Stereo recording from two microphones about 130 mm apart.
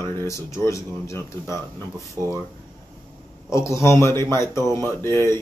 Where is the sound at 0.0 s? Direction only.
20° left (ahead or behind).